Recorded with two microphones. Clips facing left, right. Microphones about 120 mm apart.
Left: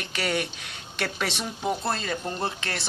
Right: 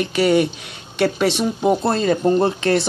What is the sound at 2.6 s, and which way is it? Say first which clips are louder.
Speech: right 16 dB; 25° right (ahead or behind).